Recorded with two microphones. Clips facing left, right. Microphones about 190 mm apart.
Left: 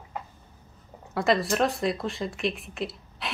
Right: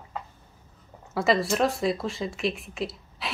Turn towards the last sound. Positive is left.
turn(degrees=0)  # may be behind; listen again after turning